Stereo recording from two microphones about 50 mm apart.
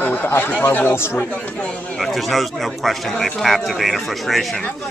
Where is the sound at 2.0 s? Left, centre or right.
Centre.